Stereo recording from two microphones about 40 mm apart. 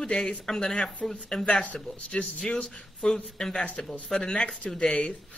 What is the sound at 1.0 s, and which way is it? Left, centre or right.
Speech, centre.